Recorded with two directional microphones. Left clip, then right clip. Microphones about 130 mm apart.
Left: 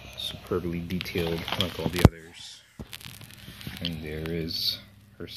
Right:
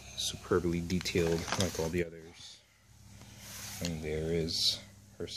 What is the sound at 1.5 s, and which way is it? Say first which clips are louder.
Speech: left 5 dB; 60° right (ahead or behind).